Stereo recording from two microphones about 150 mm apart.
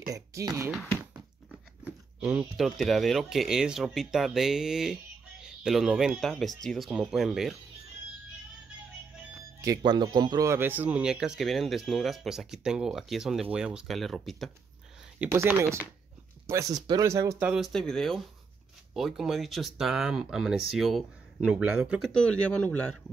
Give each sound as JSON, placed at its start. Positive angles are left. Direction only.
{"t": 0.0, "sound": "speech", "side_deg": -20}
{"t": 2.1, "sound": "a man's voice", "side_deg": -5}
{"t": 9.6, "sound": "a man's voice", "side_deg": -25}
{"t": 15.1, "sound": "speech", "side_deg": -15}
{"t": 17.5, "sound": "a man's voice", "side_deg": 0}
{"t": 22.1, "sound": "speech", "side_deg": 5}